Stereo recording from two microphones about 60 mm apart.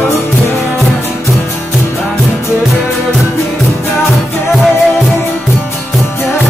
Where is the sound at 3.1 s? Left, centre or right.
Centre.